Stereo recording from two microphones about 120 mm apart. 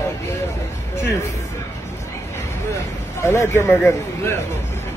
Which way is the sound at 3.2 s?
20° left (ahead or behind).